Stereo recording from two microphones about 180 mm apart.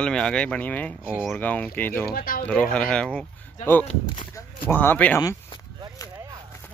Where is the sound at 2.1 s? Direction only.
55° left (ahead or behind).